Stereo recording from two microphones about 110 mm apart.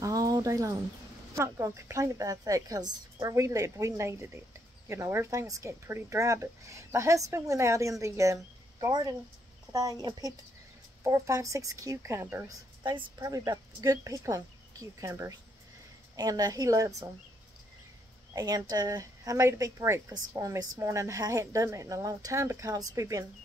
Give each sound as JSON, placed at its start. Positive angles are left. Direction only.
{"t": 0.0, "sound": "a sound", "side_deg": -35}
{"t": 1.3, "sound": "a woman's voice", "side_deg": -25}
{"t": 11.1, "sound": "a woman's voice", "side_deg": -30}
{"t": 12.4, "sound": "a woman's voice", "side_deg": -35}
{"t": 18.3, "sound": "speech", "side_deg": -35}